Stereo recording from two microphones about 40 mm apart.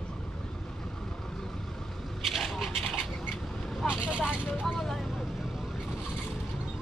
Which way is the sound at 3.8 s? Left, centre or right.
Right.